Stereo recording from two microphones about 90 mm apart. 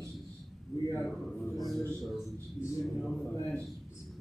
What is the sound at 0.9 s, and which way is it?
A man's voice, centre (ahead or behind).